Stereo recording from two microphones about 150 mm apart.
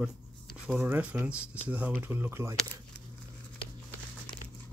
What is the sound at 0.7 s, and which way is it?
Speech, 10° right (ahead or behind).